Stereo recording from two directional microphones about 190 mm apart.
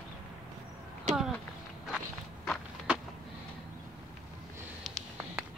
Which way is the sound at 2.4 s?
Centre (ahead or behind).